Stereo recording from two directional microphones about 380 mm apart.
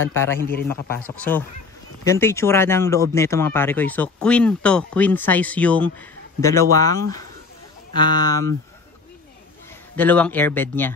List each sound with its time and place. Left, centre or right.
0.1 s speech: centre
9.9 s speech: centre